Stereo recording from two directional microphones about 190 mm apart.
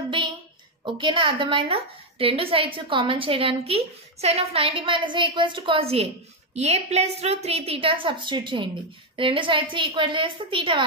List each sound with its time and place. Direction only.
0.8 s a woman's voice: 25° right (ahead or behind)